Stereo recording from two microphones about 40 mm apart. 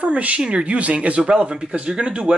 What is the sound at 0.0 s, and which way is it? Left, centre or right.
Speech, right.